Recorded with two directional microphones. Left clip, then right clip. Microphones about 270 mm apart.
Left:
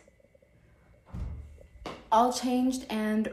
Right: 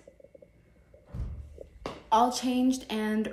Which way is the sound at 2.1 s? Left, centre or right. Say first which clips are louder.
Even; centre.